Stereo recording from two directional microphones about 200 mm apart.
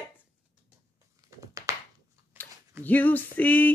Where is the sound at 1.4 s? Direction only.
15° right (ahead or behind).